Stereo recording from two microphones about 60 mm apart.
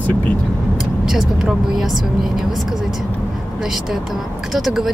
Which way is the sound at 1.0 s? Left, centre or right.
Centre.